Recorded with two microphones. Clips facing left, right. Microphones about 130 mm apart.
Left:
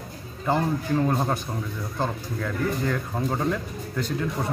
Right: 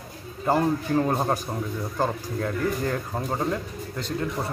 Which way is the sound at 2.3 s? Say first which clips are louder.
Even; 35° right (ahead or behind).